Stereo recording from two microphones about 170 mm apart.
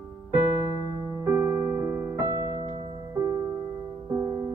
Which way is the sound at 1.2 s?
15° right (ahead or behind).